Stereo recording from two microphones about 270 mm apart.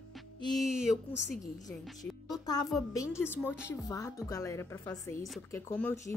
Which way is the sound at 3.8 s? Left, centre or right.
Centre.